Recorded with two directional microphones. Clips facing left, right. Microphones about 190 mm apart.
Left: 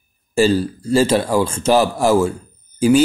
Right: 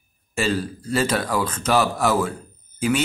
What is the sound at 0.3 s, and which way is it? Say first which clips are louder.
Speech: left 8 dB; 30° left (ahead or behind).